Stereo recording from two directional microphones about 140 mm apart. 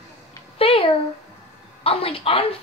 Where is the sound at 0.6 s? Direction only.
40° left (ahead or behind).